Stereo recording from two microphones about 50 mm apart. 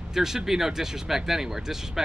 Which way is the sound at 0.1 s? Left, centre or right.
Centre.